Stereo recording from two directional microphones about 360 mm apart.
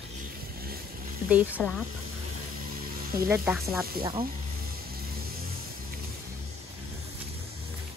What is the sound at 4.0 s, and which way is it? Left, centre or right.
Speech, right.